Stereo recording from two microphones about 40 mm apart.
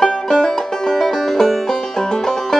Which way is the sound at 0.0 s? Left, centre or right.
Centre.